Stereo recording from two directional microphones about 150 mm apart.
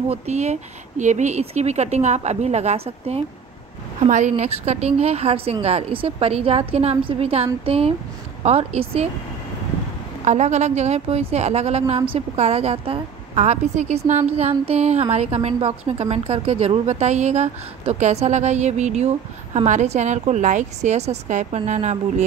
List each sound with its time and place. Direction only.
0.1 s a woman's voice: 50° right (ahead or behind)
10.2 s a woman's voice: 50° right (ahead or behind)